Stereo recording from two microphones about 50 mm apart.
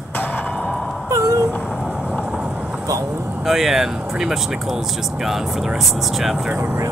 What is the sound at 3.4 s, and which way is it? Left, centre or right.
Speech, centre.